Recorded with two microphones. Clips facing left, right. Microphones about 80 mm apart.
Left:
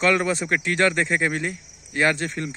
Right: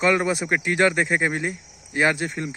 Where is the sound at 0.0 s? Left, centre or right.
Centre.